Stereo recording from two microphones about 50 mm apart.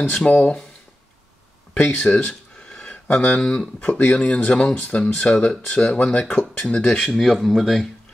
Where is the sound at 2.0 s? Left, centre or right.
Left.